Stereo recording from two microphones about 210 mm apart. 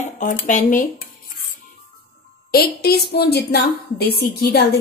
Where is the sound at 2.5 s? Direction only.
50° left (ahead or behind).